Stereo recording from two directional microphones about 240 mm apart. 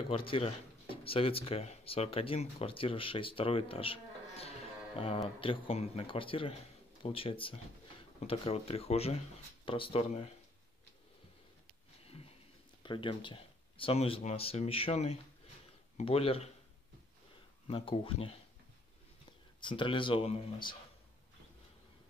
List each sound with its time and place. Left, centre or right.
0.1 s speech: left
12.0 s a sound: left
12.8 s speech: centre
17.6 s speech: left
19.6 s speech: left